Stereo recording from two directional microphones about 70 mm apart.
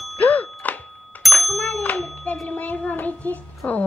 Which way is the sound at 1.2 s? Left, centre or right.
Centre.